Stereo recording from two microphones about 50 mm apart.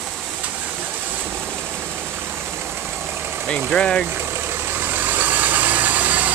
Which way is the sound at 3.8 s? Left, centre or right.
Centre.